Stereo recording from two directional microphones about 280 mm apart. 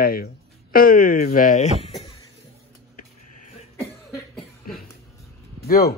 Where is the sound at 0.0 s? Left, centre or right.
Left.